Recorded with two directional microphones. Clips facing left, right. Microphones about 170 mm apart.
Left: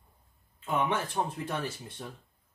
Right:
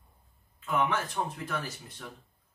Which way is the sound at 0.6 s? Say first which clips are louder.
Even; 30° left (ahead or behind).